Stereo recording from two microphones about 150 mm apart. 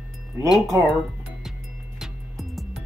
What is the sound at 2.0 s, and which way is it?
Music, centre (ahead or behind).